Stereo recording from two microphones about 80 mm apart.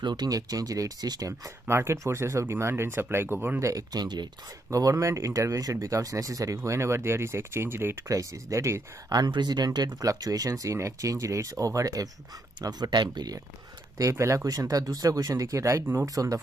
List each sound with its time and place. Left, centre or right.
0.0 s speech: right
1.7 s speech: right
3.6 s speech: right
4.6 s speech: right
8.1 s speech: right
9.3 s speech: right
12.6 s speech: right
13.9 s speech: right